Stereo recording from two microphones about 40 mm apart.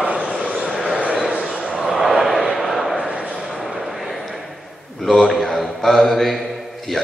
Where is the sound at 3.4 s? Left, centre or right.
Centre.